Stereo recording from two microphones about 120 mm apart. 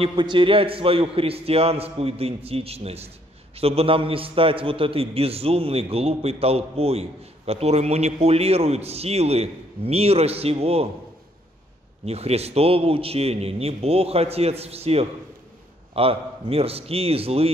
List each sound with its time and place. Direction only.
0.0 s a man's voice: 45° right (ahead or behind)
12.1 s a man's voice: 60° right (ahead or behind)